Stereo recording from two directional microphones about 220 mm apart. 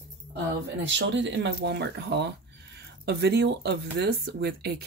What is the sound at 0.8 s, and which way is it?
Speech, 55° right (ahead or behind).